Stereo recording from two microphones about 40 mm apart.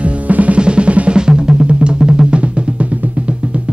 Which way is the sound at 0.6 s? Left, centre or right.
Right.